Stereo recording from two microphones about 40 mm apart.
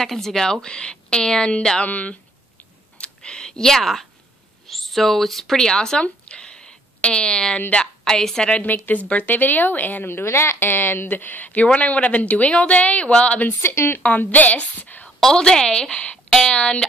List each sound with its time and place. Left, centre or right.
0.0 s a woman's voice: centre
1.9 s speech: left
3.0 s computer keyboard: left
3.7 s a woman's voice: centre
6.0 s a sound: left
8.0 s a woman's voice: centre
8.7 s speech: left
13.6 s a woman's voice: left
14.0 s speech: left
15.3 s speech: left
16.3 s a sound: centre
16.5 s speech: left